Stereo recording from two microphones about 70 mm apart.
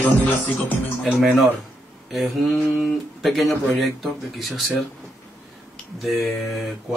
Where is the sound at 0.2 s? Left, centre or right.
Left.